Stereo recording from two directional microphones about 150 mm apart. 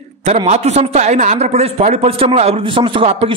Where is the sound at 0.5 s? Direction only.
45° right (ahead or behind).